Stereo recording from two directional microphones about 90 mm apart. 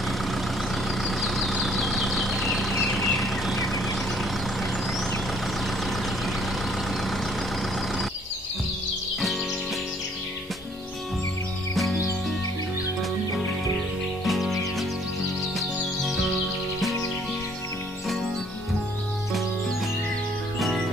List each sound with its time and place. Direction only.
1.0 s vehicle: centre (ahead or behind)
11.7 s music: centre (ahead or behind)
14.2 s music: centre (ahead or behind)
20.5 s music: centre (ahead or behind)